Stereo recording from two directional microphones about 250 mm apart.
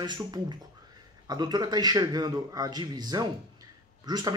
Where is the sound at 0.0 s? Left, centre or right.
Centre.